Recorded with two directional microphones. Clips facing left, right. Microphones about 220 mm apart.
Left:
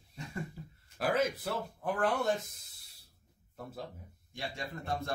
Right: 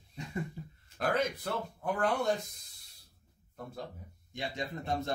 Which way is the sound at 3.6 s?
5° left (ahead or behind).